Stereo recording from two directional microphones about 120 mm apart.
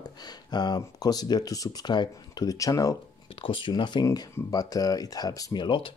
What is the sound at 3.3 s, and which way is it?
Speech, 45° left (ahead or behind).